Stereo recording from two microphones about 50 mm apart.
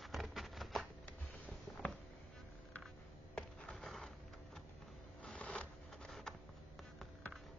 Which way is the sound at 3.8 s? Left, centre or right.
Centre.